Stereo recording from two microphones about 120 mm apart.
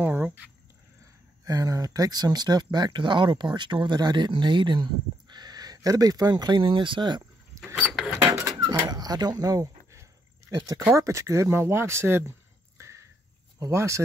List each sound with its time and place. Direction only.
0.0 s speech: 15° right (ahead or behind)
1.4 s speech: 30° right (ahead or behind)
7.5 s mechanisms: 25° right (ahead or behind)
8.2 s dishes: 25° right (ahead or behind)
8.6 s speech: 35° right (ahead or behind)